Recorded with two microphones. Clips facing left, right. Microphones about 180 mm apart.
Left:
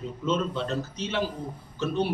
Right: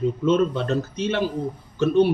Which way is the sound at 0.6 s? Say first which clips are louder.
Right 7 dB; 55° right (ahead or behind).